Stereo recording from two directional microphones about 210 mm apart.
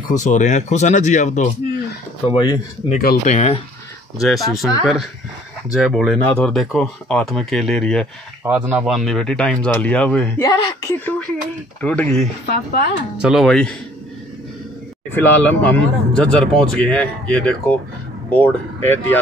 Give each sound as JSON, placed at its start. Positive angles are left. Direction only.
{"t": 0.1, "sound": "speech", "side_deg": 35}
{"t": 2.3, "sound": "speech", "side_deg": 20}
{"t": 2.9, "sound": "speech", "side_deg": 40}
{"t": 4.2, "sound": "speech", "side_deg": 0}
{"t": 5.7, "sound": "speech", "side_deg": -5}
{"t": 10.4, "sound": "a woman's voice", "side_deg": 20}
{"t": 12.4, "sound": "speech", "side_deg": 50}
{"t": 13.2, "sound": "speech", "side_deg": 0}
{"t": 15.1, "sound": "a woman's voice", "side_deg": 10}